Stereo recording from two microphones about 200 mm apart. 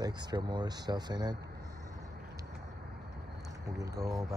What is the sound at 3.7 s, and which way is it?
Speech, 15° right (ahead or behind).